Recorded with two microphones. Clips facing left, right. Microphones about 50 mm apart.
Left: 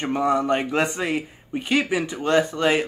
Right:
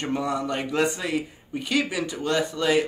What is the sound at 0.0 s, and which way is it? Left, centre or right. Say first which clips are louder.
Speech: left 5 dB; left.